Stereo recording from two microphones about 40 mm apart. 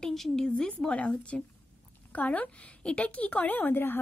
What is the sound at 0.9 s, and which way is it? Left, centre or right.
A woman's voice, left.